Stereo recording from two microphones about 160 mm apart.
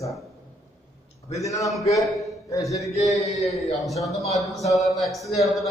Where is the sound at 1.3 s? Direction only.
20° left (ahead or behind).